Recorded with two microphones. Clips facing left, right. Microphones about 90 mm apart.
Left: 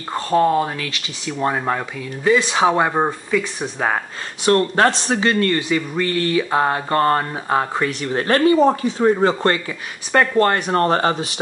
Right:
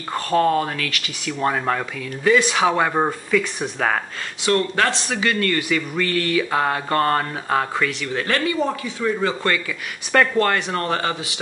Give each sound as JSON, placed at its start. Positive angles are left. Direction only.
{"t": 0.1, "sound": "speech", "side_deg": 20}
{"t": 2.3, "sound": "speech", "side_deg": 25}
{"t": 4.5, "sound": "speech", "side_deg": 35}